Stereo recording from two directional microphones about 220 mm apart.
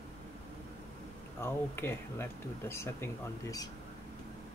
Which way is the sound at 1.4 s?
10° left (ahead or behind).